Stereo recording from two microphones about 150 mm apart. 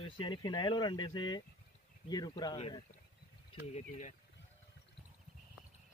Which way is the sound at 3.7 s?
50° left (ahead or behind).